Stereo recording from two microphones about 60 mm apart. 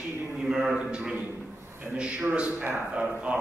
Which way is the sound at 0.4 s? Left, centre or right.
Centre.